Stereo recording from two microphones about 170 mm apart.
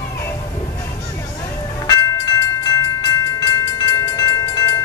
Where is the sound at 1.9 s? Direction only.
20° left (ahead or behind).